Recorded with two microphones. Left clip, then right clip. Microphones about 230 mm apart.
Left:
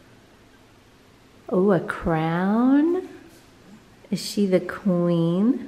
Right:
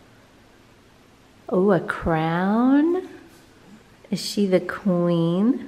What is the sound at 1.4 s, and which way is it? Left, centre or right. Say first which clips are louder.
A woman's voice: right 1 dB; centre.